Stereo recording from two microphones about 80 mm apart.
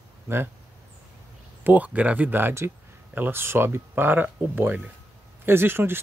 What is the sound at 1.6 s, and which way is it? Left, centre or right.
Speech, right.